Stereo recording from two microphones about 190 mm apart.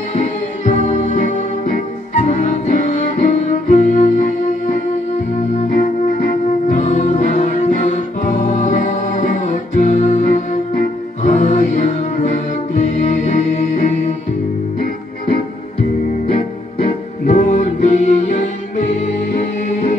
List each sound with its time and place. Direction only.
0.1 s music: 35° left (ahead or behind)
16.3 s music: 30° left (ahead or behind)
17.3 s music: 40° left (ahead or behind)